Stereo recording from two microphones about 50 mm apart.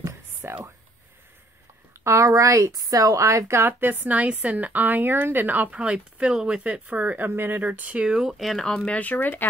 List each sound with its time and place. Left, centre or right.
0.4 s a sound: right
2.0 s a woman's voice: right
3.8 s a woman's voice: right
5.8 s speech: right
8.2 s speech: centre
8.8 s speech: left